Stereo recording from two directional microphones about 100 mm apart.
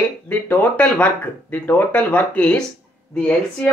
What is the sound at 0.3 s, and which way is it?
Speech, 15° left (ahead or behind).